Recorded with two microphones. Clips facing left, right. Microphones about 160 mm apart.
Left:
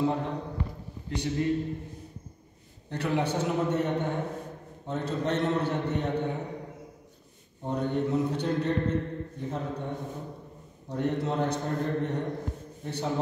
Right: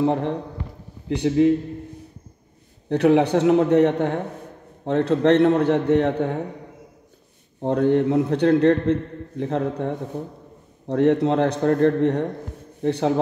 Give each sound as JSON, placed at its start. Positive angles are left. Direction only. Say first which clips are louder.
{"t": 0.0, "sound": "a man's voice", "louder": "right 7 dB", "side_deg": -70}
{"t": 1.0, "sound": "speech", "louder": "right 12 dB", "side_deg": -90}
{"t": 2.9, "sound": "a man's voice", "louder": "right 12 dB", "side_deg": -80}
{"t": 7.6, "sound": "a man's voice", "louder": "right 10 dB", "side_deg": -85}
{"t": 9.4, "sound": "a man's voice", "louder": "right 12 dB", "side_deg": -90}